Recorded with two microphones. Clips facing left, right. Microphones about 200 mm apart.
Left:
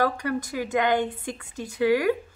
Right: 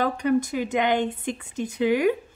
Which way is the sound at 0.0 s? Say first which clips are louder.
Right 3 dB; 20° right (ahead or behind).